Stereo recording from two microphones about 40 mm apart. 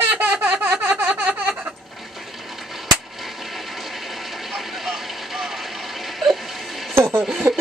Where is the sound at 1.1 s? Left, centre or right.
Right.